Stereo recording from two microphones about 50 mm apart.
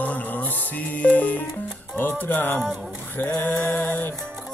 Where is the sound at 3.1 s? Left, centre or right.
Left.